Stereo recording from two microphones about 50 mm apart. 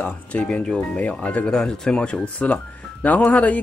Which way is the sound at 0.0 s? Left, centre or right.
Left.